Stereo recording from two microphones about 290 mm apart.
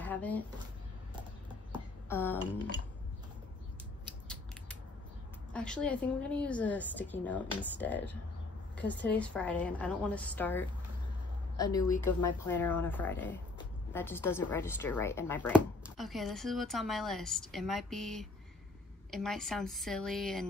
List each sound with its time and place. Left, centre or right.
0.0 s a sound: centre
2.0 s speech: centre
5.5 s speech: centre
12.1 s speech: left
12.4 s speech: centre